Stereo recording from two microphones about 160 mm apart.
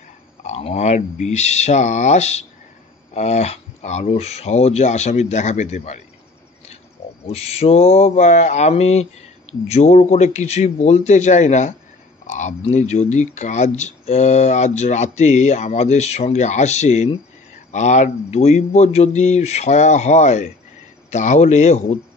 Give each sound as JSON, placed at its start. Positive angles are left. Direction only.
{"t": 0.5, "sound": "speech", "side_deg": 40}
{"t": 7.2, "sound": "mantra", "side_deg": 40}
{"t": 9.7, "sound": "speech", "side_deg": 45}